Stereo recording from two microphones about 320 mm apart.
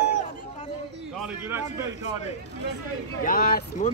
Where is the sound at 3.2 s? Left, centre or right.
Left.